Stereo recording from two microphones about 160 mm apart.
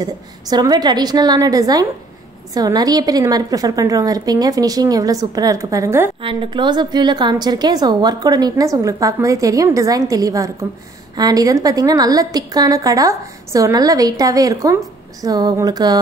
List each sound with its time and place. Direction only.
0.0 s a woman's voice: 25° right (ahead or behind)
6.2 s a woman's voice: 30° right (ahead or behind)